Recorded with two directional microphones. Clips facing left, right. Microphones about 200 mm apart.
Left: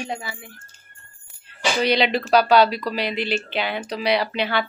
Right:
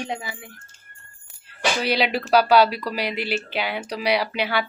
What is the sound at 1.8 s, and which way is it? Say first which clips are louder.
Speech: left 5 dB; 5° right (ahead or behind).